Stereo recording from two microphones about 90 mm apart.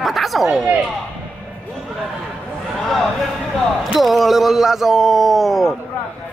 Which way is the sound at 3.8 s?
Centre (ahead or behind).